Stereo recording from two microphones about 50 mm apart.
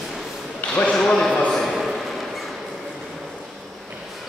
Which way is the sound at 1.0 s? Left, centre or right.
Centre.